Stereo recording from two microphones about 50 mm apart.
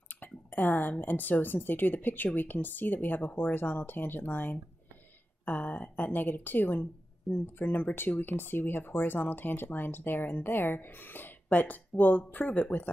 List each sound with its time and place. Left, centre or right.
0.1 s speech: left